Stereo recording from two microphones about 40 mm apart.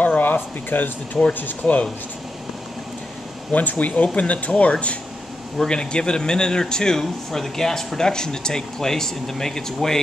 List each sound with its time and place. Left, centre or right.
0.0 s a sound: left
1.6 s speech: left
3.5 s speech: left
5.7 s speech: left